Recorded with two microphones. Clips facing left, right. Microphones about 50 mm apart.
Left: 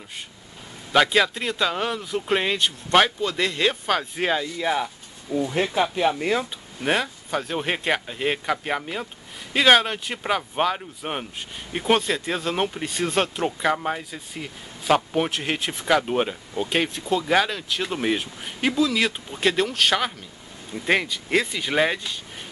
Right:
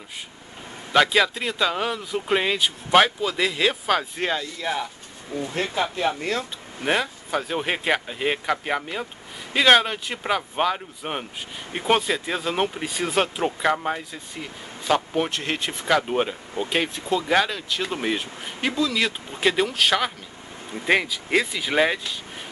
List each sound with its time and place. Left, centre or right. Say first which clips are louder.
0.9 s speech: even; centre
6.8 s speech: even; centre